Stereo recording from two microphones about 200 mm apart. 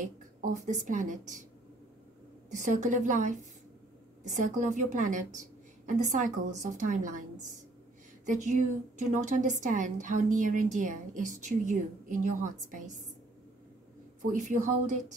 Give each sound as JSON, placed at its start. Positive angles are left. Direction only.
{"t": 0.0, "sound": "speech", "side_deg": -40}
{"t": 2.5, "sound": "a woman's voice", "side_deg": -40}
{"t": 14.3, "sound": "a woman's voice", "side_deg": -40}